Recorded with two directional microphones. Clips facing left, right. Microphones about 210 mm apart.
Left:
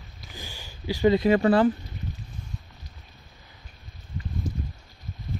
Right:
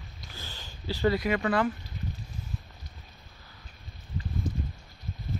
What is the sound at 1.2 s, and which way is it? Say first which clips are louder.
Speech: left 7 dB; 30° left (ahead or behind).